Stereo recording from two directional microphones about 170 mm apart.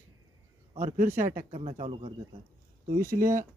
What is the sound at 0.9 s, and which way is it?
Speech, 50° right (ahead or behind).